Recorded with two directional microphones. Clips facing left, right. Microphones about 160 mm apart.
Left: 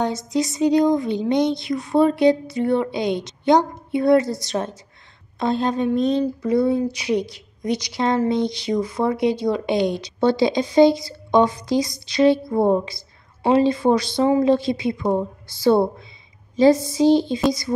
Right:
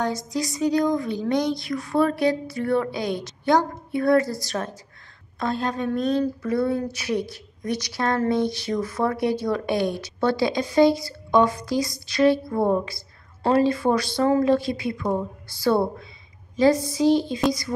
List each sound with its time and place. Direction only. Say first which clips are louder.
0.0 s speech: left 4 dB; 25° left (ahead or behind)